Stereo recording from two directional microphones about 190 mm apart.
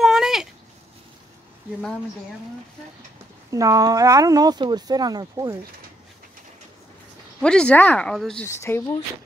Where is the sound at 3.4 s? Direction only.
15° right (ahead or behind).